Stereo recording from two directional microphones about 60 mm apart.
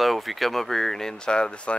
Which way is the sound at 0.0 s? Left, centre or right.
Centre.